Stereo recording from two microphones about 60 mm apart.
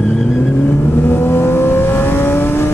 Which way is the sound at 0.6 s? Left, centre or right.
Left.